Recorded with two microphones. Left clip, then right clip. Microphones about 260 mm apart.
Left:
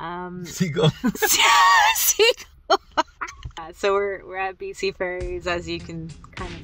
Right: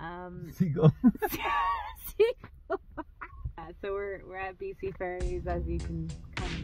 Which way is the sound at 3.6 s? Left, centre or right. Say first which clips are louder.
Left 14 dB; left.